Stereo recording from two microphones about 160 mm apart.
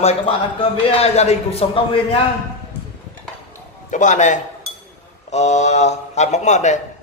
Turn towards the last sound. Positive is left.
turn(degrees=45)  # may be behind; listen again after turning